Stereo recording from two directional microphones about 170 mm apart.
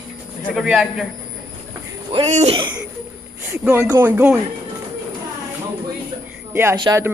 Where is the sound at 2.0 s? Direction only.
40° right (ahead or behind).